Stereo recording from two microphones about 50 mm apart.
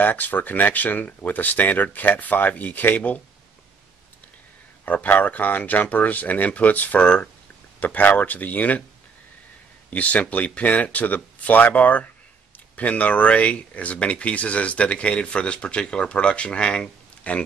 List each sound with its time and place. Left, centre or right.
0.0 s speech: left
4.8 s speech: left
9.8 s a man's voice: left